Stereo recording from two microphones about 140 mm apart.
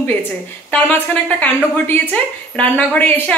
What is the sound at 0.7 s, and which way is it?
A woman's voice, 10° left (ahead or behind).